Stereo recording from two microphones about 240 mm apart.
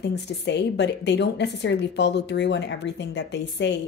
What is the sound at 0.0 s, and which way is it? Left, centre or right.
A woman's voice, left.